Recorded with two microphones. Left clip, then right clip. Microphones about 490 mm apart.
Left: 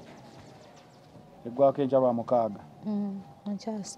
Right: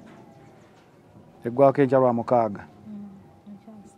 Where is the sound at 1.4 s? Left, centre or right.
Right.